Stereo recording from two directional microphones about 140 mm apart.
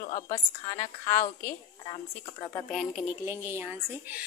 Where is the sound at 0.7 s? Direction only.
20° left (ahead or behind).